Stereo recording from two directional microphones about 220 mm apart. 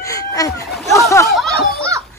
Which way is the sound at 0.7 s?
Centre (ahead or behind).